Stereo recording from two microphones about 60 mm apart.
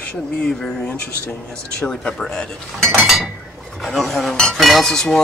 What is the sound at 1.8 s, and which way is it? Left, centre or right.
Speech, centre.